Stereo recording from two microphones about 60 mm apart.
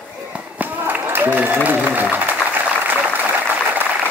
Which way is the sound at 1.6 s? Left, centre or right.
Right.